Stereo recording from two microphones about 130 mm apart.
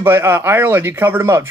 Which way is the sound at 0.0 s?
15° right (ahead or behind).